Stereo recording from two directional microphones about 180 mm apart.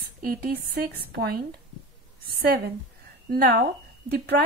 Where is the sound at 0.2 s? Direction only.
55° right (ahead or behind).